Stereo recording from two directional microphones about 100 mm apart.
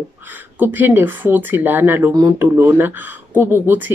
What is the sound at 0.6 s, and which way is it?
A woman's voice, 20° right (ahead or behind).